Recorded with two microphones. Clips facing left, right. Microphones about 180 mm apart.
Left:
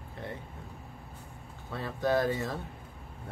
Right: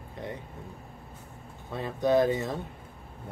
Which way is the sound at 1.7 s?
20° right (ahead or behind).